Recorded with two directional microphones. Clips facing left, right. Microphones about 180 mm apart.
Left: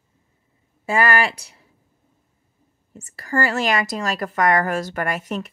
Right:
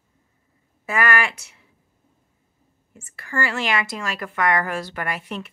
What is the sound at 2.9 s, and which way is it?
A woman's voice, 35° left (ahead or behind).